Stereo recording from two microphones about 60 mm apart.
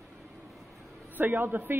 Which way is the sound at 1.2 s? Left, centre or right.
Right.